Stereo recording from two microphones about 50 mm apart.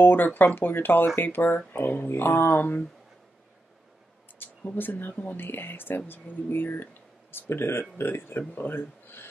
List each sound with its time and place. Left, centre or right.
0.0 s speech: left
4.4 s speech: left